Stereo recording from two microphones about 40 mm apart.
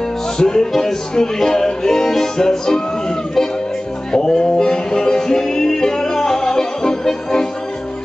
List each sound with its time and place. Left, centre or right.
0.4 s music: centre
4.1 s music: centre